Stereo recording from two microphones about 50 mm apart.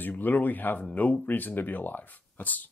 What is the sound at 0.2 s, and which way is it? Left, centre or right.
Speech, left.